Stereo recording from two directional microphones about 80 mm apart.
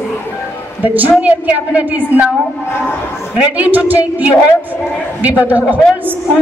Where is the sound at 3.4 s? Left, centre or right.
Centre.